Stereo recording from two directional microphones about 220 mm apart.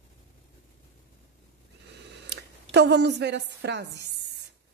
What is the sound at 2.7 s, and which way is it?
A woman's voice, 50° right (ahead or behind).